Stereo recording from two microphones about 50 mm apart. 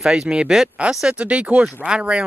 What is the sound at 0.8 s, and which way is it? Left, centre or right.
Speech, right.